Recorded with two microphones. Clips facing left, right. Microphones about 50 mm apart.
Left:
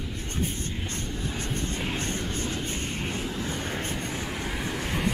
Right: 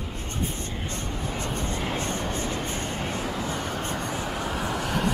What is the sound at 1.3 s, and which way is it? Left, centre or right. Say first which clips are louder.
Vehicle: right 3 dB; right.